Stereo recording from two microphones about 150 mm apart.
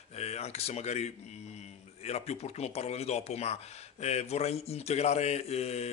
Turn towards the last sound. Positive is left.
turn(degrees=45)  # may be behind; listen again after turning